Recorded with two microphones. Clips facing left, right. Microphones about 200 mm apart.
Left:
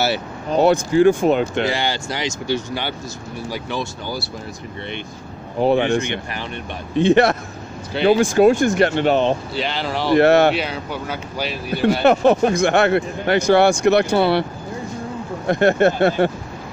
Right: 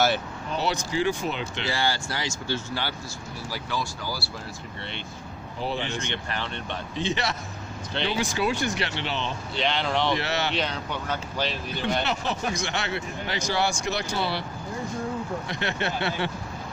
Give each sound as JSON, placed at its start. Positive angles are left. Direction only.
{"t": 0.5, "sound": "speech", "side_deg": 50}
{"t": 1.7, "sound": "speech", "side_deg": 20}
{"t": 5.6, "sound": "speech", "side_deg": 60}
{"t": 9.6, "sound": "speech", "side_deg": 5}
{"t": 10.1, "sound": "speech", "side_deg": 55}
{"t": 10.5, "sound": "speech", "side_deg": 10}
{"t": 12.0, "sound": "speech", "side_deg": 55}
{"t": 15.4, "sound": "speech", "side_deg": 50}